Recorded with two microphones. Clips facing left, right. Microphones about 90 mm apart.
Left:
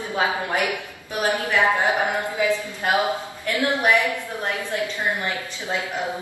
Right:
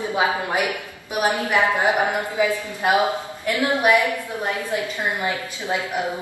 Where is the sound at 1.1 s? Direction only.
15° right (ahead or behind).